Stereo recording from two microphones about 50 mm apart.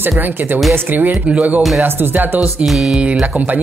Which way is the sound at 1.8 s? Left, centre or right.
Right.